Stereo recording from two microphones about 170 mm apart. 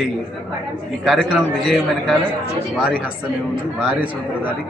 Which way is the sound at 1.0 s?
Centre (ahead or behind).